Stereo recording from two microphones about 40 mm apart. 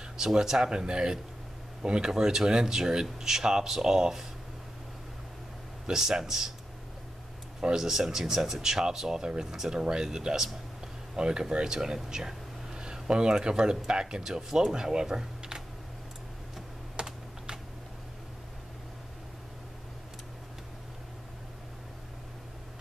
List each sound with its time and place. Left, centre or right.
0.0 s speech: centre
5.9 s speech: centre
7.6 s speech: centre
17.0 s typing: right